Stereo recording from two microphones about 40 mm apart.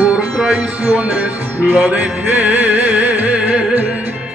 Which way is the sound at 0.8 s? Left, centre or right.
Right.